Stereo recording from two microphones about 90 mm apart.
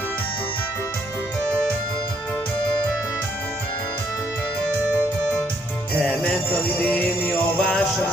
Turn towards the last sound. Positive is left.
turn(degrees=15)  # may be behind; listen again after turning